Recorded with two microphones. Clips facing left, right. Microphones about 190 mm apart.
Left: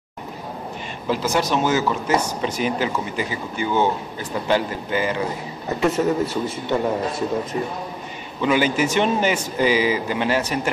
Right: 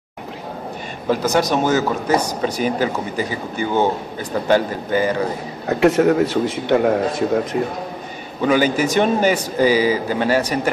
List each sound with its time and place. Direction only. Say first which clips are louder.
1.0 s a man's voice: right 4 dB; 45° right (ahead or behind)
5.7 s a man's voice: right 6 dB; 70° right (ahead or behind)
8.4 s speech: right 3 dB; 40° right (ahead or behind)